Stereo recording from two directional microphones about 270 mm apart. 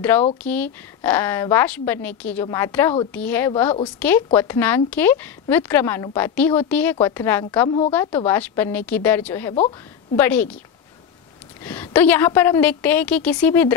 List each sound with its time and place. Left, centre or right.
0.4 s a woman's voice: centre
11.6 s a woman's voice: centre